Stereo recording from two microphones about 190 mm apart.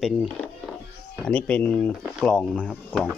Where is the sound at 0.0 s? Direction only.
Centre (ahead or behind).